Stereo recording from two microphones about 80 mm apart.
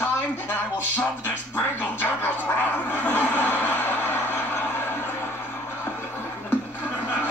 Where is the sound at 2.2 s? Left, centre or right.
Left.